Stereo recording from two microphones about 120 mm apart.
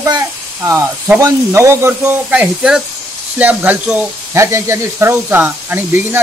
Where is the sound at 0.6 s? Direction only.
20° right (ahead or behind).